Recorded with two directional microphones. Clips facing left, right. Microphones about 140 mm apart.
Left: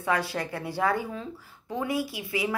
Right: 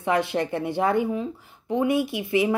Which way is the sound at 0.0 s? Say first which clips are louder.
Right 5 dB; 20° right (ahead or behind).